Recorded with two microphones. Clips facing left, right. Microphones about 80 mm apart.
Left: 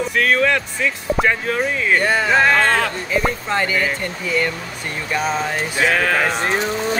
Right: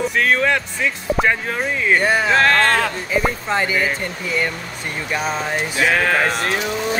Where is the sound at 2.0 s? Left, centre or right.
Centre.